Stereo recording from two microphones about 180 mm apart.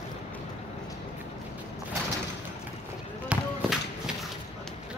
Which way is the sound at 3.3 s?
5° right (ahead or behind).